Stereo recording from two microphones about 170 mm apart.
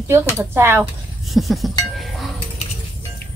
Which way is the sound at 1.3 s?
Centre (ahead or behind).